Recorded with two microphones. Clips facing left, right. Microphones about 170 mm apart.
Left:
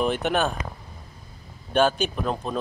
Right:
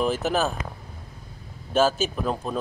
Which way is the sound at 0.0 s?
Centre (ahead or behind).